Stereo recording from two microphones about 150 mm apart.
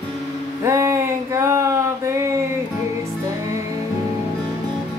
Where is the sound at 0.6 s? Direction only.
20° right (ahead or behind).